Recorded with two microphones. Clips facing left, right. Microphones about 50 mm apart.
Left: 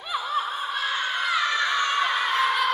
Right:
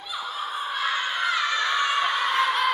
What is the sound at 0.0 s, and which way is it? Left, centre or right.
Snicker, left.